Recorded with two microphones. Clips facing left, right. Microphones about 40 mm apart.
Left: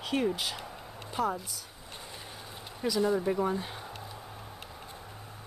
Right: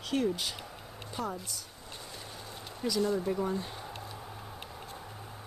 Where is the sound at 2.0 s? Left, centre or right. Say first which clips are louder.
Even; centre.